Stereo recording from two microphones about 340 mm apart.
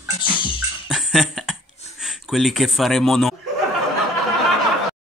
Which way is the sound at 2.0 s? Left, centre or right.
Centre.